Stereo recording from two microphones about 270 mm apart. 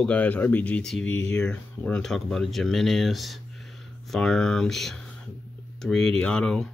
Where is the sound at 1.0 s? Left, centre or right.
Left.